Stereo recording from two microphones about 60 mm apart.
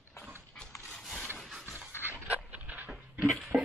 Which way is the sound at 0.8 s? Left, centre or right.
Centre.